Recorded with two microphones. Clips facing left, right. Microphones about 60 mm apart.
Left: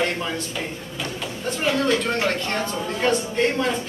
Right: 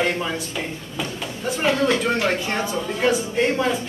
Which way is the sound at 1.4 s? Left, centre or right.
Centre.